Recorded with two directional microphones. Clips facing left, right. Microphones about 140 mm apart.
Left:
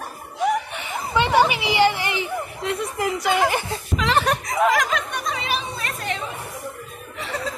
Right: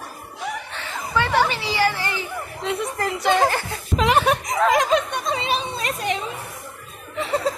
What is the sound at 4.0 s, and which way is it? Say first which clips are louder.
Speech: right 3 dB; 10° right (ahead or behind).